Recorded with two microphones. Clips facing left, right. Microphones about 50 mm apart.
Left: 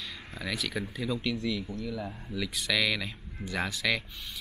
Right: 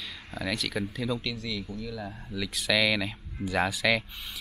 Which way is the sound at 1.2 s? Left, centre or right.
Centre.